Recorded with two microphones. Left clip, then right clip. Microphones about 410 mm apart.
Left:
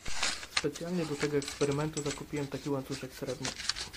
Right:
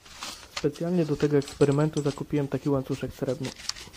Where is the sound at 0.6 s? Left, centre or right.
Centre.